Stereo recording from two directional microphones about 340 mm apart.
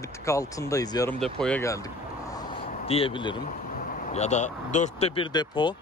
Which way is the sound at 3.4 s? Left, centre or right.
Left.